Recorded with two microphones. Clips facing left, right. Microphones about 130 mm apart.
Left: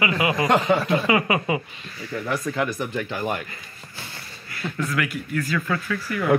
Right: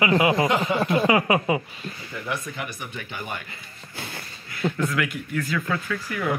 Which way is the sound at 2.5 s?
90° left.